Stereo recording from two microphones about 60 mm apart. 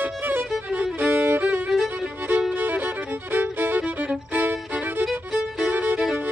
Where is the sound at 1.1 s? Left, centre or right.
Right.